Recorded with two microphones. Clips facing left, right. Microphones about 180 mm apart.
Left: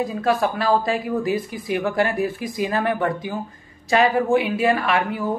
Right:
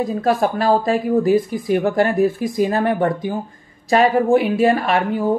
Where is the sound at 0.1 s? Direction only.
45° right (ahead or behind).